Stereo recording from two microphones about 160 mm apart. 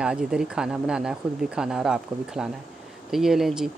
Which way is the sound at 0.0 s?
5° right (ahead or behind).